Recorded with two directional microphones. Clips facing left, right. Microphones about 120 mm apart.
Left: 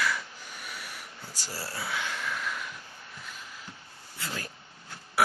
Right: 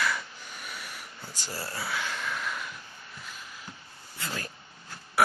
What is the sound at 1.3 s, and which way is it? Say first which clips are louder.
Speech: right 1 dB; 5° left (ahead or behind).